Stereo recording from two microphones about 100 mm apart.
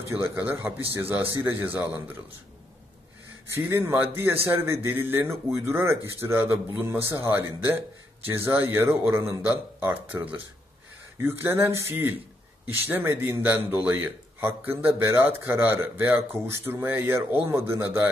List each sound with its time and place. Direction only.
0.2 s speech: 25° right (ahead or behind)
3.5 s speech: 25° right (ahead or behind)